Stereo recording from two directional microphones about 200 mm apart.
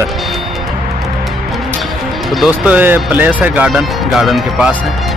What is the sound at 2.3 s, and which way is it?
Speech, 5° right (ahead or behind).